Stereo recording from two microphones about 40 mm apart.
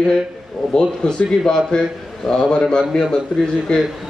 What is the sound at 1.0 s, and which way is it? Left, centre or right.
A man's voice, centre.